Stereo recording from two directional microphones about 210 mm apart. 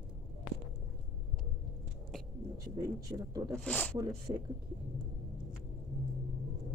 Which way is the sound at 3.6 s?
5° left (ahead or behind).